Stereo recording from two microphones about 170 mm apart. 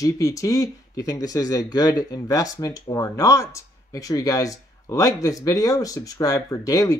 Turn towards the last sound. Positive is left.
turn(degrees=20)  # may be behind; listen again after turning